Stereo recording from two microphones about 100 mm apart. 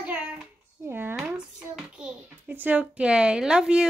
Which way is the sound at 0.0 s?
10° right (ahead or behind).